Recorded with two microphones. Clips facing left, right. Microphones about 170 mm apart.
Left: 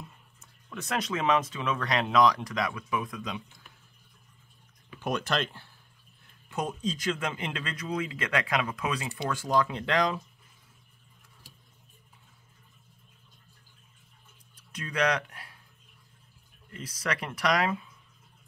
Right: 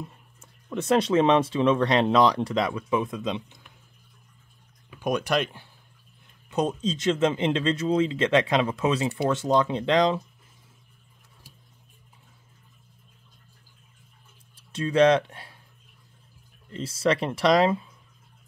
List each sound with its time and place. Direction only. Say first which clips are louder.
0.0 s speech: right 8 dB; 30° right (ahead or behind)
4.9 s speech: right 5 dB; 10° right (ahead or behind)
14.5 s speech: right 11 dB; 30° right (ahead or behind)
16.7 s speech: right 10 dB; 25° right (ahead or behind)